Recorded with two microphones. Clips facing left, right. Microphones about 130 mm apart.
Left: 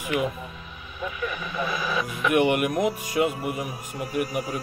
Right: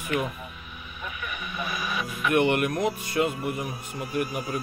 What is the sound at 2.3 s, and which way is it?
Speech, 10° left (ahead or behind).